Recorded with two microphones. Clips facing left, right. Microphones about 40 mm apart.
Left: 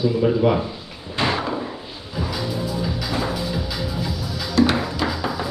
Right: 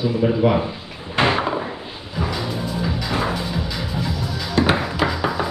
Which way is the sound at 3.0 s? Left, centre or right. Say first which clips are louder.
Right 3 dB; right.